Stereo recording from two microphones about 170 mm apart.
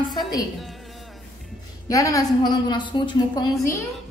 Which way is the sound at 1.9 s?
20° left (ahead or behind).